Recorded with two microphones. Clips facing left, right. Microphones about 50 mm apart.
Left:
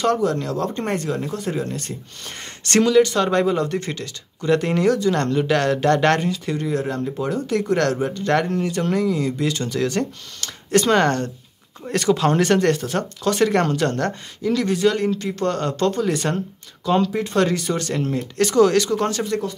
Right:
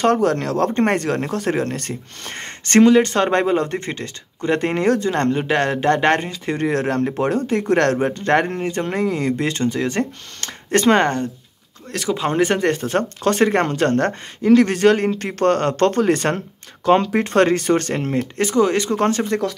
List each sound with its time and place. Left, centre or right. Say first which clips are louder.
0.0 s speech: right 3 dB; right
6.5 s speech: right 7 dB; right
11.1 s speech: even; centre
11.9 s speech: left 4 dB; centre
12.2 s speech: right 3 dB; centre
12.7 s speech: right 4 dB; right
18.4 s speech: left 2 dB; right
18.9 s speech: right 3 dB; right